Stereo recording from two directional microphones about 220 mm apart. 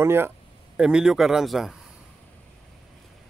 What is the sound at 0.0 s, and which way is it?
Speech, 10° right (ahead or behind).